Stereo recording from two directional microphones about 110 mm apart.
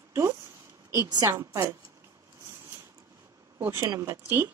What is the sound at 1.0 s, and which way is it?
Speech, 35° right (ahead or behind).